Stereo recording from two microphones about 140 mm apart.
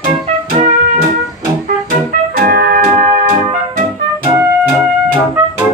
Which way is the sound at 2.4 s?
90° right.